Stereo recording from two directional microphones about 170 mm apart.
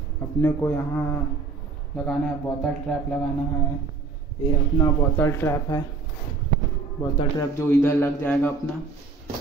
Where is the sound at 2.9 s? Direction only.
Centre (ahead or behind).